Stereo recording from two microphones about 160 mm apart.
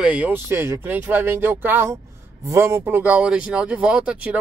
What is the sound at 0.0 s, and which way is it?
Speech, 10° right (ahead or behind).